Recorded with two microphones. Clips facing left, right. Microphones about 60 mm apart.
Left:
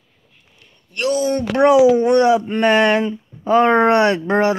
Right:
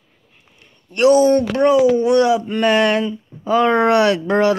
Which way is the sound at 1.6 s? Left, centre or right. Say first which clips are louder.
Left 3 dB; centre.